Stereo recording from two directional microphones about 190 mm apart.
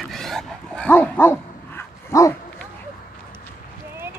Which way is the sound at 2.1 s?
15° left (ahead or behind).